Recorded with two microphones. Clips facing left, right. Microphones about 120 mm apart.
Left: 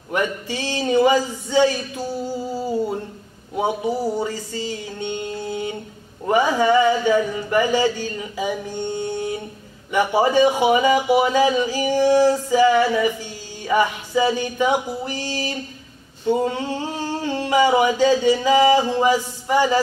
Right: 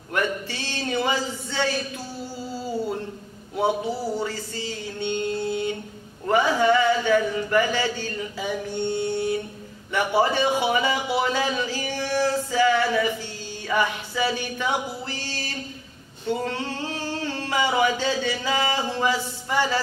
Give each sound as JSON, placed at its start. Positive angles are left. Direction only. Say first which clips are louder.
{"t": 0.1, "sound": "a man's voice", "louder": "left 3 dB", "side_deg": 15}
{"t": 3.5, "sound": "a man's voice", "louder": "left 2 dB", "side_deg": 15}
{"t": 16.3, "sound": "singing", "louder": "left 6 dB", "side_deg": 15}